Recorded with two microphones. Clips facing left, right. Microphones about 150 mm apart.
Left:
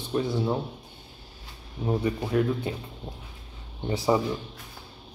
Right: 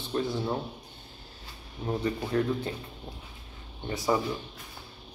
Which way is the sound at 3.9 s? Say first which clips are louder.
Left 4 dB; 20° left (ahead or behind).